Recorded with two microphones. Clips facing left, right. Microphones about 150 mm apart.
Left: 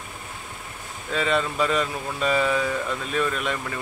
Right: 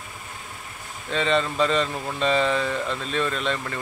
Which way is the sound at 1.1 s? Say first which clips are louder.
Right 1 dB; 5° left (ahead or behind).